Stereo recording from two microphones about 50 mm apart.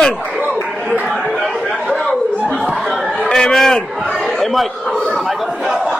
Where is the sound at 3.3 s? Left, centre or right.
Centre.